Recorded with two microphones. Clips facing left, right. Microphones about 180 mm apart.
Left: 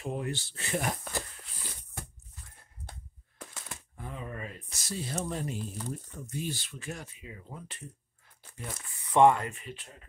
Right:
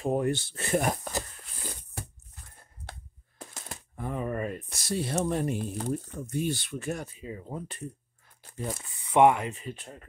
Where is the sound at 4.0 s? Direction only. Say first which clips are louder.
Right 9 dB; 55° right (ahead or behind).